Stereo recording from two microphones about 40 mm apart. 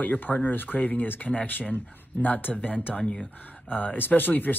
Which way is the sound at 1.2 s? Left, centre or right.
Left.